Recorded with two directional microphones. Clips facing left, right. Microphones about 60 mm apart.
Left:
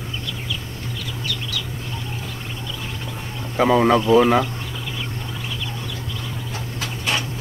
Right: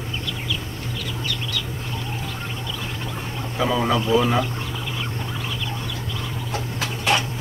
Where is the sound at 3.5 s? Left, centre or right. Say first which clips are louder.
Left 6 dB; left.